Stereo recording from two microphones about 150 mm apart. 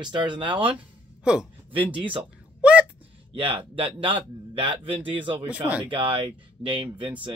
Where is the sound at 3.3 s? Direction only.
35° right (ahead or behind).